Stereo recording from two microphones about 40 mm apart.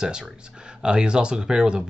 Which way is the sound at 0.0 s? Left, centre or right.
Centre.